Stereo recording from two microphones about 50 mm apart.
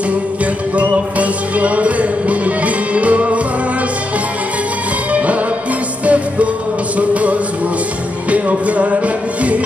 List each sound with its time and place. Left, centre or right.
0.7 s music: right
5.1 s music: right